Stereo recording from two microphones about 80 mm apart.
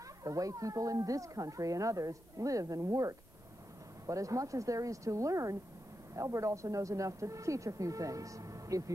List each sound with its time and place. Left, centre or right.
0.2 s speech: right